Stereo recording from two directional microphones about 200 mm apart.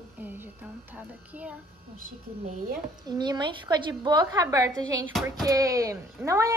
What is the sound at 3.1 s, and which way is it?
A woman's voice, 20° right (ahead or behind).